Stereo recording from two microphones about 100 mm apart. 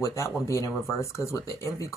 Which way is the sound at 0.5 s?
30° left (ahead or behind).